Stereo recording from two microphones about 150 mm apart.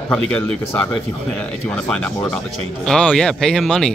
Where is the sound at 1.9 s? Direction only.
5° left (ahead or behind).